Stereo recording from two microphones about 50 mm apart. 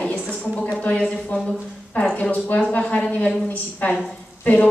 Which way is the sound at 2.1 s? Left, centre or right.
Left.